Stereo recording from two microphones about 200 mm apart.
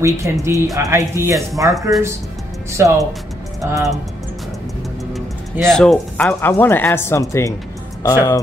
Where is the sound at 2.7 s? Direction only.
15° right (ahead or behind).